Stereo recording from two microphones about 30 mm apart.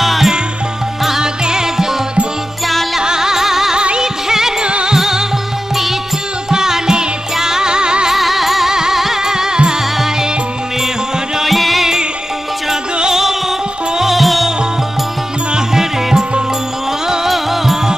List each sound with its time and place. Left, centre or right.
0.0 s music: centre
1.2 s music: right
3.0 s music: right
6.5 s music: centre
8.1 s music: centre
9.2 s music: centre
11.4 s music: centre
13.1 s music: centre
14.2 s music: centre
15.5 s music: centre
17.3 s music: centre